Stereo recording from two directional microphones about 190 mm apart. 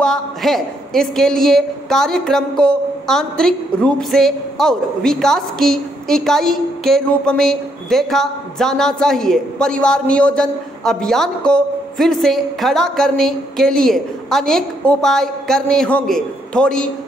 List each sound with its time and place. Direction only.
0.0 s a woman's voice: centre (ahead or behind)